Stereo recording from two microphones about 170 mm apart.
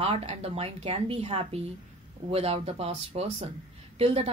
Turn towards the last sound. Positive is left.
turn(degrees=-35)  # may be behind; listen again after turning